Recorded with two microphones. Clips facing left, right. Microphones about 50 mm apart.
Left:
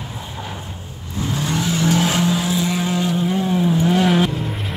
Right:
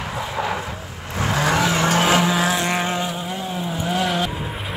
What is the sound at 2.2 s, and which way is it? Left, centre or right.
Vehicle, right.